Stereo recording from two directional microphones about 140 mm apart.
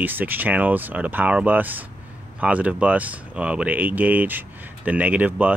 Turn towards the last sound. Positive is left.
turn(degrees=-10)  # may be behind; listen again after turning